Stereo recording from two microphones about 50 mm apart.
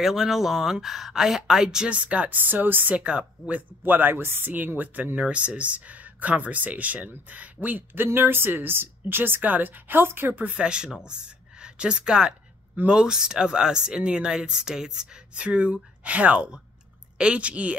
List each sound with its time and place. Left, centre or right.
0.0 s speech: centre
1.9 s speech: right
3.0 s speech: right
3.8 s speech: right
10.5 s speech: centre